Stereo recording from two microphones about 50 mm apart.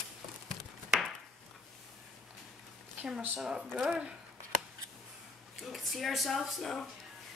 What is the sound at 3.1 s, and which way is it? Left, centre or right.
Speech, centre.